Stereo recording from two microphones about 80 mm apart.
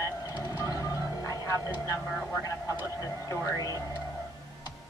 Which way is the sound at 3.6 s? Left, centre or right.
Left.